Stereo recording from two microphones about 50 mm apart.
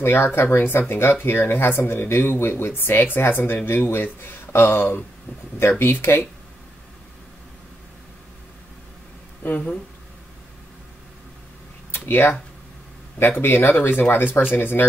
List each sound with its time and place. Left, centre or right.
0.0 s speech: left
9.4 s speech: left
11.9 s speech: left